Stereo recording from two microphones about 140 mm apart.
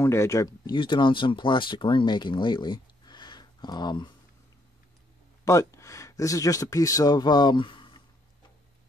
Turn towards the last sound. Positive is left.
turn(degrees=35)  # may be behind; listen again after turning